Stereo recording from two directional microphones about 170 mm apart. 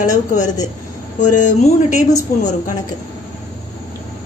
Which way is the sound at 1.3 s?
45° left (ahead or behind).